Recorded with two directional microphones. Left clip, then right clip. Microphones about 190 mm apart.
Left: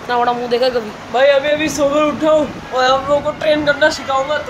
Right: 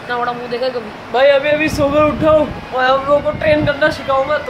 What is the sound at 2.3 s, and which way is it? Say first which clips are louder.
Speech: right 1 dB; 10° left (ahead or behind).